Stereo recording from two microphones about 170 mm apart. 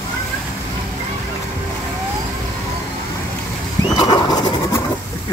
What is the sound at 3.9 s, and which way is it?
Bird, 25° left (ahead or behind).